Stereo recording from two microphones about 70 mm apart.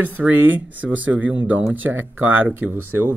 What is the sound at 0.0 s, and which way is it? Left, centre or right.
Speech, right.